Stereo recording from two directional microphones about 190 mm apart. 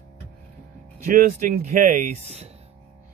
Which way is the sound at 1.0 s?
45° right (ahead or behind).